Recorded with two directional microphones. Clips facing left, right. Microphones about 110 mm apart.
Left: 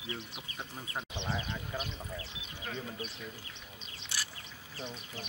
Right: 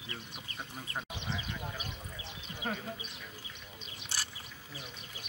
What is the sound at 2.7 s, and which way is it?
Speech, 40° right (ahead or behind).